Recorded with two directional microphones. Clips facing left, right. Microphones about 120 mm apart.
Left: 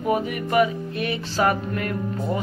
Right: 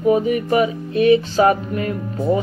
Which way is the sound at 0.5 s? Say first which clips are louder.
Even; 20° right (ahead or behind).